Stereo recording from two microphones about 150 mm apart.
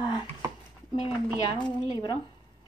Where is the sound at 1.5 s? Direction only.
30° left (ahead or behind).